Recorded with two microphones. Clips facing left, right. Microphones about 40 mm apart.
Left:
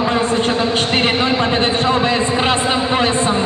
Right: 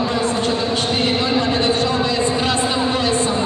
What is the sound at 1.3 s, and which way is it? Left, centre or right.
A man's voice, left.